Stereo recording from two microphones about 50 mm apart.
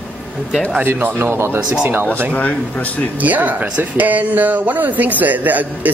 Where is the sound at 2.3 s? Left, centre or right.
Left.